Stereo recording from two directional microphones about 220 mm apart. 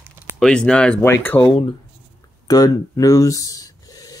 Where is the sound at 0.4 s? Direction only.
5° left (ahead or behind).